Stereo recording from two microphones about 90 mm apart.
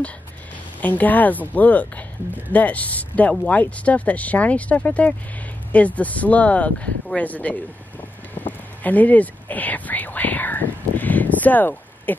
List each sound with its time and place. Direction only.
0.7 s speech: 20° left (ahead or behind)
8.4 s whispering: 20° left (ahead or behind)